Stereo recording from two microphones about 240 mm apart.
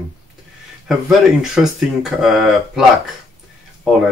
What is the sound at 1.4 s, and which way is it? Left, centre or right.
Speech, centre.